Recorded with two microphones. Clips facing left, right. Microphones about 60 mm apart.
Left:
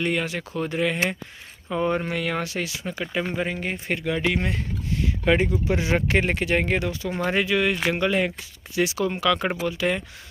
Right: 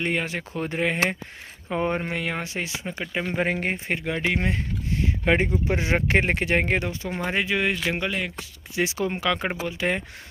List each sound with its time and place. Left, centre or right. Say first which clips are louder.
0.0 s speech: left 1 dB; right
3.3 s speech: right 2 dB; right
3.8 s speech: left 2 dB; right
7.2 s speech: left 2 dB; centre
8.7 s speech: left 2 dB; right